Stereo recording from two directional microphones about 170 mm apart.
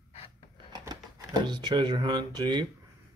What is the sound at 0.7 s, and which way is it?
Speech, 25° right (ahead or behind).